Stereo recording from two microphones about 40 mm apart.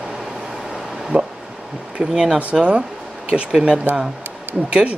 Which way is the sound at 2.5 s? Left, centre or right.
Right.